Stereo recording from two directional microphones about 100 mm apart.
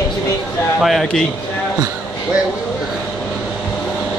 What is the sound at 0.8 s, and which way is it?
Speech, 5° left (ahead or behind).